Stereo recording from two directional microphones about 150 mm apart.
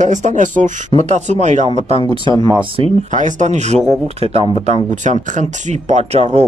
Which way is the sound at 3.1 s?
55° right (ahead or behind).